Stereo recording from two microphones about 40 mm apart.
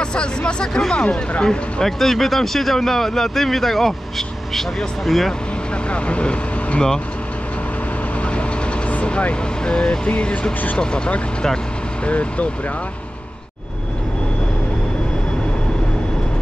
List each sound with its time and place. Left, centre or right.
0.0 s speech: left
1.4 s speech: centre
5.9 s speech: left
8.4 s speech: left